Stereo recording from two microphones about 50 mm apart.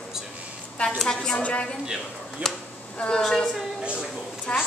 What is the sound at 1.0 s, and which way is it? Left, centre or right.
Speech, centre.